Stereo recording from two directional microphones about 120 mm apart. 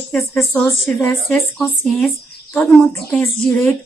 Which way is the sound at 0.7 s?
20° left (ahead or behind).